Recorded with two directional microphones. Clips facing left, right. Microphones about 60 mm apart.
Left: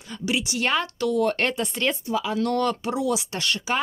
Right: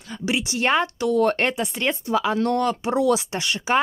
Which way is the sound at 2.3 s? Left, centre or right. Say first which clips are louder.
Right 2 dB; right.